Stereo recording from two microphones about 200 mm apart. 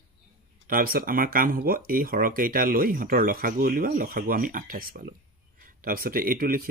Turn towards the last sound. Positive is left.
turn(degrees=-45)  # may be behind; listen again after turning